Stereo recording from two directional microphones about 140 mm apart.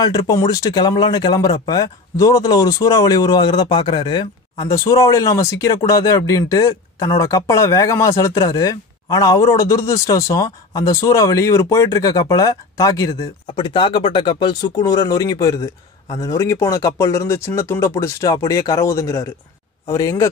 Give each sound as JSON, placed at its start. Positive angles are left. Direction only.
{"t": 0.0, "sound": "speech", "side_deg": 30}
{"t": 13.2, "sound": "speech", "side_deg": 35}